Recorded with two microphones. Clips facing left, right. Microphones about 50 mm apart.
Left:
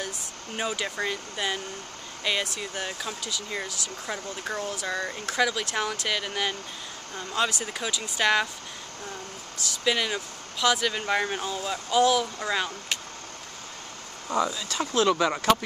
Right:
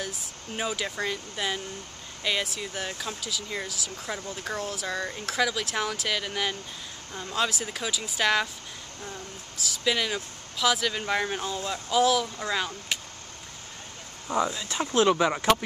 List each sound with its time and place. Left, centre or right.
0.6 s speech: centre
9.7 s speech: centre
14.5 s speech: centre